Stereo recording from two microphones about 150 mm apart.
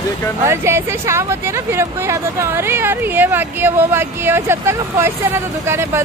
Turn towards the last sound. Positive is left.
turn(degrees=-15)  # may be behind; listen again after turning